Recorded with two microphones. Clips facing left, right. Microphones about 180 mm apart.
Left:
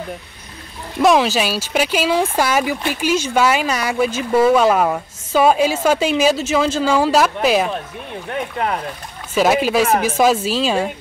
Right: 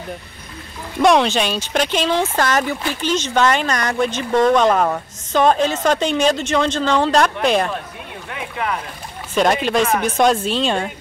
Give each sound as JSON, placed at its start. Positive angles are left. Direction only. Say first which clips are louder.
{"t": 1.0, "sound": "speech", "louder": "even", "side_deg": 5}
{"t": 8.3, "sound": "speech", "louder": "left 3 dB", "side_deg": 40}
{"t": 9.3, "sound": "speech", "louder": "left 2 dB", "side_deg": 5}